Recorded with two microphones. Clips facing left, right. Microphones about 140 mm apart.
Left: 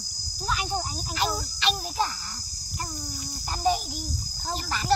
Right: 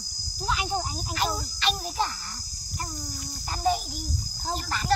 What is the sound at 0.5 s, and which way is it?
Cricket, 20° right (ahead or behind).